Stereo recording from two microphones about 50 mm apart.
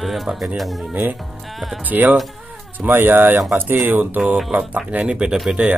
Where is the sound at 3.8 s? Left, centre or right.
Right.